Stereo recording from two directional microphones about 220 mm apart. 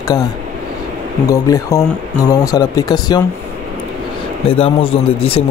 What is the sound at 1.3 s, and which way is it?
Speech, 15° left (ahead or behind).